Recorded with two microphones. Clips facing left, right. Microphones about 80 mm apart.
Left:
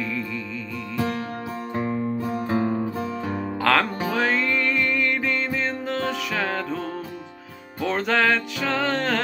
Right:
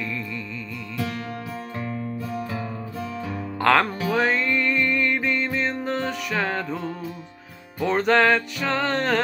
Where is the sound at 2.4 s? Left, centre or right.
Left.